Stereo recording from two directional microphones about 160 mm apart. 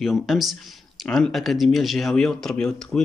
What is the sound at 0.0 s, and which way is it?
Speech, centre (ahead or behind).